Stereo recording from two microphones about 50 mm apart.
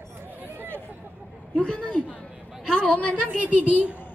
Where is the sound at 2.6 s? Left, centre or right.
Centre.